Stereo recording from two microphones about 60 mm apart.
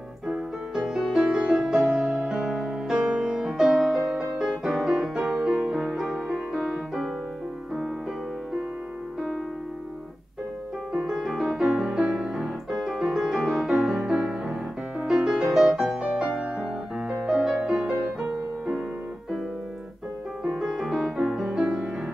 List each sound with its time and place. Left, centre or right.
0.3 s music: centre
10.9 s music: centre
20.4 s music: centre